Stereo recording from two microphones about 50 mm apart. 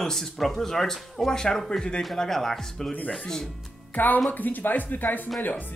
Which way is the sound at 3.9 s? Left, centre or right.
Left.